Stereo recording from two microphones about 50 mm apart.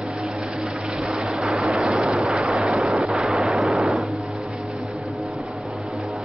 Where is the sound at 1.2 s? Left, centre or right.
Centre.